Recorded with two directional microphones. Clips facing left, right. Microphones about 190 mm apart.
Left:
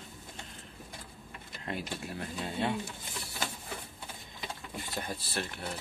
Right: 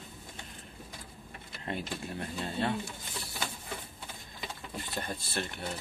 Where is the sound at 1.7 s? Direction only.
5° left (ahead or behind).